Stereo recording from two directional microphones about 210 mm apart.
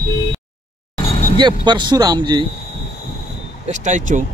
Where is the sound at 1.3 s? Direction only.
20° right (ahead or behind).